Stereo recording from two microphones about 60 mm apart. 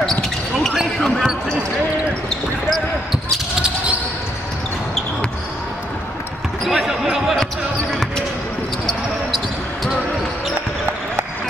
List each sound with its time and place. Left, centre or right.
0.9 s basketball bounce: centre
3.6 s a sound: right
6.6 s basketball bounce: centre